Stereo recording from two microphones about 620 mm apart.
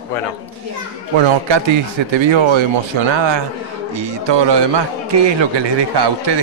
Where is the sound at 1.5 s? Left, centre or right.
Right.